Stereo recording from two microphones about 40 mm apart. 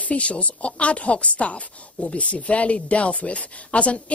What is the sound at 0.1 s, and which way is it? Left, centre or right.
Speech, left.